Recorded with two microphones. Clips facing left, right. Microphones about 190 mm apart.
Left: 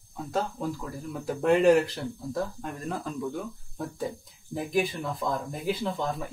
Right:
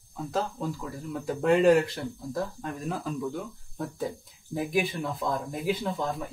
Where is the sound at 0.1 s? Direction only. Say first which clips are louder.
Even; centre (ahead or behind).